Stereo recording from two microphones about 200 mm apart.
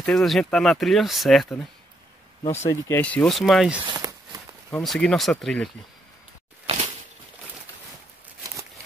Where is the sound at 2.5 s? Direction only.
15° left (ahead or behind).